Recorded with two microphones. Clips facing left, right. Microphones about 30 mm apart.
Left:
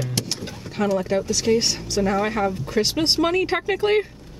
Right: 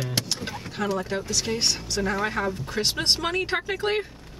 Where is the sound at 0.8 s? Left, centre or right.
Centre.